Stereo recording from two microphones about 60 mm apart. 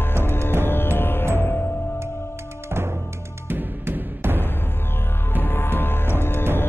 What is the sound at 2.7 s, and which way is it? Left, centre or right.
Music, right.